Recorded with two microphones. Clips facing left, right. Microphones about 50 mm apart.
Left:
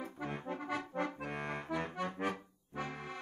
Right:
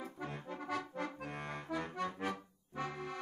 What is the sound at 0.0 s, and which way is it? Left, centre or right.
Accordion, left.